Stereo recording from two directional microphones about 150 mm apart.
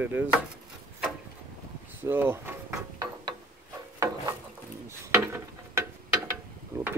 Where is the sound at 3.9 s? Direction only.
20° right (ahead or behind).